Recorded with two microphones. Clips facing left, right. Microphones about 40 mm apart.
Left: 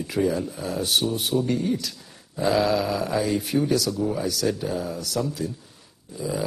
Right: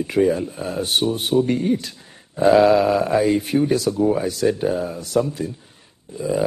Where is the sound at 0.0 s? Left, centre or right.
Right.